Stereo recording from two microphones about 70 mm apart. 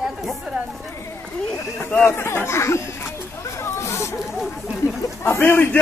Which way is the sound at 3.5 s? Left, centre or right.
Left.